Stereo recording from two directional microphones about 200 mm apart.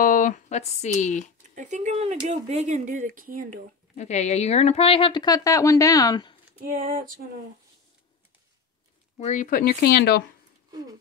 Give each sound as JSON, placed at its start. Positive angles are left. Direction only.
{"t": 0.0, "sound": "speech", "side_deg": 40}
{"t": 1.5, "sound": "speech", "side_deg": -40}
{"t": 3.9, "sound": "speech", "side_deg": 35}
{"t": 6.6, "sound": "speech", "side_deg": -45}
{"t": 9.2, "sound": "speech", "side_deg": 35}